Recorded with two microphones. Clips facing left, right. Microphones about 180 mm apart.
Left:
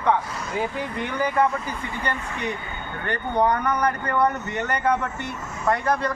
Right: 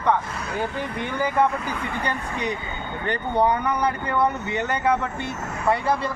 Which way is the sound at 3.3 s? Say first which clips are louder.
Even; 10° right (ahead or behind).